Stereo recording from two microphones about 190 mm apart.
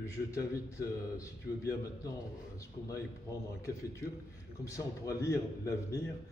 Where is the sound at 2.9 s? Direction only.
15° left (ahead or behind).